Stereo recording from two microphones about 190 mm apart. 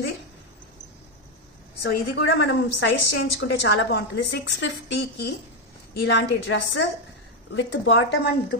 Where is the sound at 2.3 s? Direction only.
60° left (ahead or behind).